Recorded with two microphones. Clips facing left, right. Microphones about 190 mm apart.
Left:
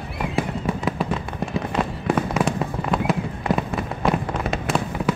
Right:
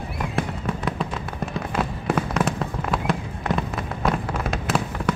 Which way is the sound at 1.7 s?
5° right (ahead or behind).